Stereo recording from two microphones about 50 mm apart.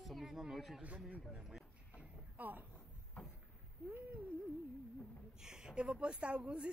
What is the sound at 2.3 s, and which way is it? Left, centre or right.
Speech, right.